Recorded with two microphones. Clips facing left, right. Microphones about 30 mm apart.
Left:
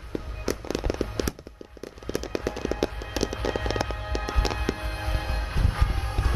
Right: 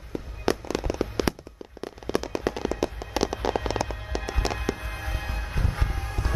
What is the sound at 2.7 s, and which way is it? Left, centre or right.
Fireworks, centre.